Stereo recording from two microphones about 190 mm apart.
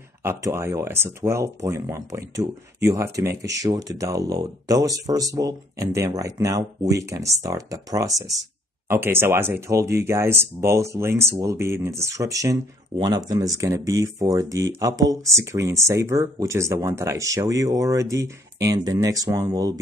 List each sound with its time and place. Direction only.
0.2 s speech: 15° right (ahead or behind)